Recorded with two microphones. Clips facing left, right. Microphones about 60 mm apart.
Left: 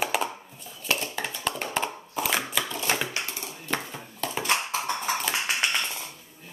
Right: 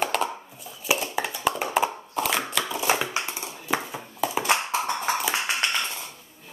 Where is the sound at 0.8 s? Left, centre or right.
Centre.